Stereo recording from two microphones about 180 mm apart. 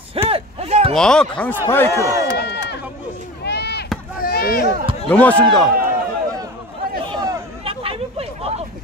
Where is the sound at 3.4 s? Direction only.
65° left (ahead or behind).